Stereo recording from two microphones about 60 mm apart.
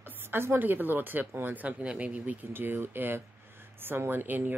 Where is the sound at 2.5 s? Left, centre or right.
Right.